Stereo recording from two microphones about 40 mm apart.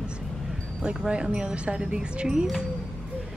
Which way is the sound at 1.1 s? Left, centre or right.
Right.